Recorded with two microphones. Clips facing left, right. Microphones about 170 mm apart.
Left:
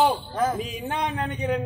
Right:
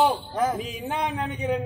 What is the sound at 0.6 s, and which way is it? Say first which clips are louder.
Speech: even; 5° right (ahead or behind).